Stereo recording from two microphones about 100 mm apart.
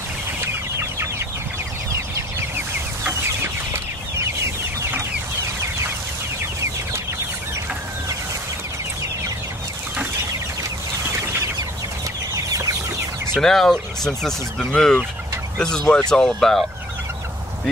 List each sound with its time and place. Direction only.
3.1 s chicken: 25° right (ahead or behind)
12.4 s chicken: 35° right (ahead or behind)
13.3 s speech: 5° left (ahead or behind)